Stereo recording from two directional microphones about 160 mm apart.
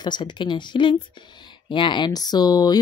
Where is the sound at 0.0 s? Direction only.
30° left (ahead or behind).